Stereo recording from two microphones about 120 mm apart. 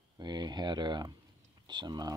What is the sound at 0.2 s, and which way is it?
Speech, 35° right (ahead or behind).